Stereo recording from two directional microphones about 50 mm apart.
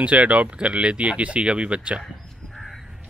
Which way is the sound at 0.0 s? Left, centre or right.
Right.